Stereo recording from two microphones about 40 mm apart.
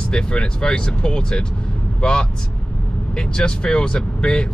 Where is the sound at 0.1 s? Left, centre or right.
Left.